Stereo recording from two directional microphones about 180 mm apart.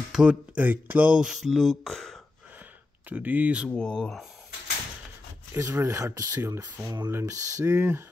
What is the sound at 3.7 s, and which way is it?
Speech, 5° left (ahead or behind).